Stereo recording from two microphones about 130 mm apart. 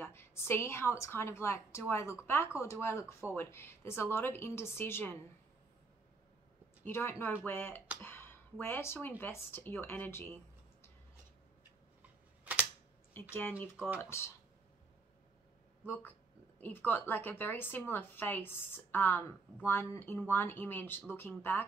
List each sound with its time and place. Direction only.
0.0 s a woman's voice: 20° left (ahead or behind)
6.8 s a woman's voice: 20° left (ahead or behind)
13.1 s a woman's voice: 15° left (ahead or behind)
13.7 s speech: 10° right (ahead or behind)
14.0 s a woman's voice: 20° left (ahead or behind)
15.8 s a woman's voice: 15° left (ahead or behind)